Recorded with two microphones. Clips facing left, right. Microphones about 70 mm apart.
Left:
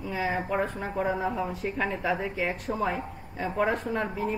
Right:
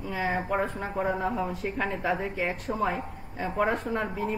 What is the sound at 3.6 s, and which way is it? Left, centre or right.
Speech, right.